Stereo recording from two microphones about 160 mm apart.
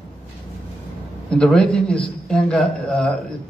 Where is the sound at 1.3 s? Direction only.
5° left (ahead or behind).